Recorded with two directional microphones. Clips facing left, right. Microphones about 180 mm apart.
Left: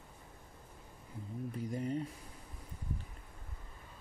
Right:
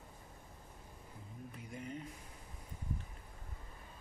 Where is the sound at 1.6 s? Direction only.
35° left (ahead or behind).